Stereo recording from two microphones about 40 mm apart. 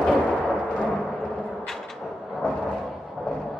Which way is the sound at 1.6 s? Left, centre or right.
Centre.